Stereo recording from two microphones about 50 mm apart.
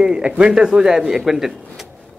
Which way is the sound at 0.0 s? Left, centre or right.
Centre.